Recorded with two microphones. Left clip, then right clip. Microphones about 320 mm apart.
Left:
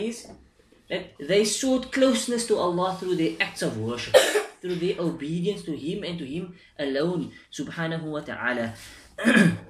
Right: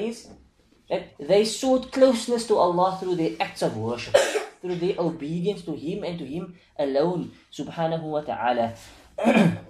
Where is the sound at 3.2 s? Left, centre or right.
Centre.